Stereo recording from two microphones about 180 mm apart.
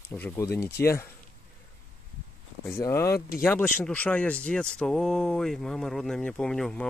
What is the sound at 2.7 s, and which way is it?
Speech, 15° left (ahead or behind).